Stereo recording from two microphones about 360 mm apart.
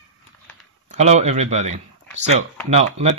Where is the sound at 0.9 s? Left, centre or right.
Centre.